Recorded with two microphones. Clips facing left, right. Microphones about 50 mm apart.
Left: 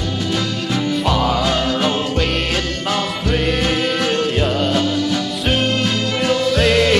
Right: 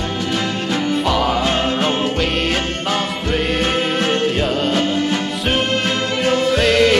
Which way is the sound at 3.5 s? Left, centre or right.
Right.